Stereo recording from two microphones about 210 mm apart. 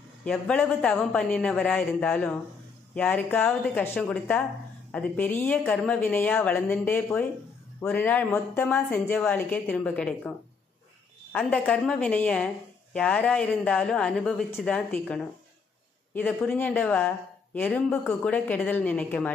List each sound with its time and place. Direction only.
0.2 s a woman's voice: 5° left (ahead or behind)
11.3 s a woman's voice: 5° left (ahead or behind)